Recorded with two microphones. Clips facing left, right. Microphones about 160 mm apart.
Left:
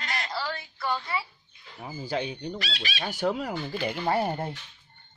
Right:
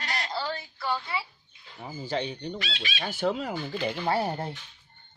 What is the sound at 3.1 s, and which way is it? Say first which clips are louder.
Speech: even; 10° left (ahead or behind).